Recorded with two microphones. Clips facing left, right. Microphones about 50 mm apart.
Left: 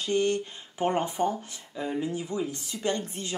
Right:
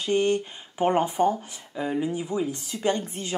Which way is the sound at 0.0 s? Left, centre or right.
Right.